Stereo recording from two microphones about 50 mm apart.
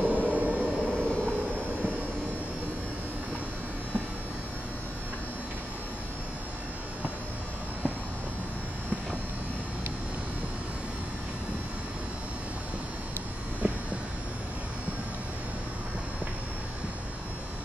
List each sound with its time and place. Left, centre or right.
0.0 s vehicle: right
0.8 s vehicle: left